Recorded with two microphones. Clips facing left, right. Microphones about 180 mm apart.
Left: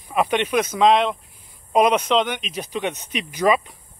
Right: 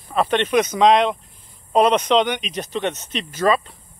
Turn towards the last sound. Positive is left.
turn(degrees=15)  # may be behind; listen again after turning